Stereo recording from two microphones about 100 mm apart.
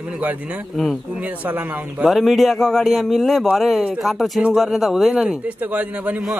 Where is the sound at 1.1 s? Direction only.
15° right (ahead or behind).